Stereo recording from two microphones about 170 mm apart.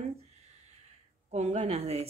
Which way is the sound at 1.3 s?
40° right (ahead or behind).